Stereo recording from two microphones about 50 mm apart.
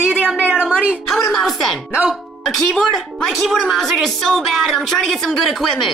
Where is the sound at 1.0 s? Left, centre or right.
Centre.